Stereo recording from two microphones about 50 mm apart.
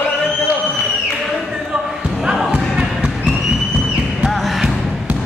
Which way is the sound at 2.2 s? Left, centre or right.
Centre.